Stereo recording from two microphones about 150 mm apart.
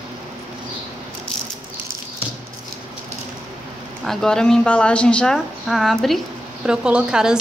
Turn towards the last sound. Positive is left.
turn(degrees=-5)  # may be behind; listen again after turning